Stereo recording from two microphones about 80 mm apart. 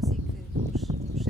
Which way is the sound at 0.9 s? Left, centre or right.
Right.